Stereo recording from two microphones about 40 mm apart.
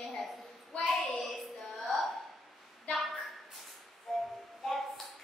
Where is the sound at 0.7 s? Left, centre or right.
Left.